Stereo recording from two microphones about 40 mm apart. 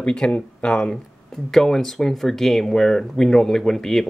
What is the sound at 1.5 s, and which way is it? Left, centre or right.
Speech, centre.